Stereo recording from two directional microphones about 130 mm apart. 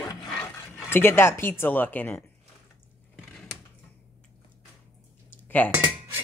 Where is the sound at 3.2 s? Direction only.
Centre (ahead or behind).